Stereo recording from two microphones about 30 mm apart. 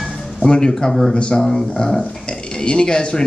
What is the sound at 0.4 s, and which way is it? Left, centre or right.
Speech, left.